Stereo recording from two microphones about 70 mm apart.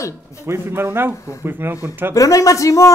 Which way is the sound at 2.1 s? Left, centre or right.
Left.